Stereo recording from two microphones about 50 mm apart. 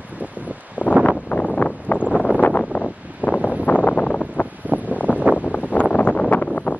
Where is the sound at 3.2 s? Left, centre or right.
Right.